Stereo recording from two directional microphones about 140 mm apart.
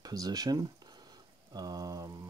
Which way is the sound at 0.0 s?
25° right (ahead or behind).